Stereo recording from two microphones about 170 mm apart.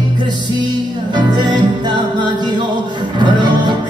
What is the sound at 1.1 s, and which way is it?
Music, 25° right (ahead or behind).